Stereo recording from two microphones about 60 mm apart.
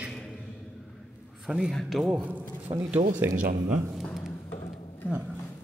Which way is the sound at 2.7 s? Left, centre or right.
Right.